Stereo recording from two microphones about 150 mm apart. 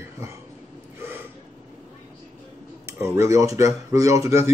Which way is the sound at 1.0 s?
15° right (ahead or behind).